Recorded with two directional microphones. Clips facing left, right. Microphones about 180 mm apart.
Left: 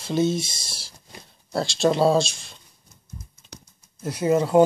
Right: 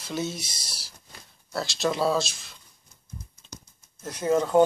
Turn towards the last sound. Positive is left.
turn(degrees=10)  # may be behind; listen again after turning